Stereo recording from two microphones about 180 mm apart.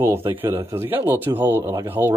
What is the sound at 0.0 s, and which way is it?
Speech, 10° right (ahead or behind).